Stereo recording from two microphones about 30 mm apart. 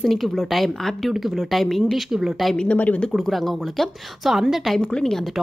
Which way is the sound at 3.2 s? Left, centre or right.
Centre.